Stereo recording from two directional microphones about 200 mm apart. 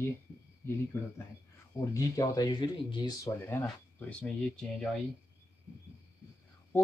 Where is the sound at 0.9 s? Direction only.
10° left (ahead or behind).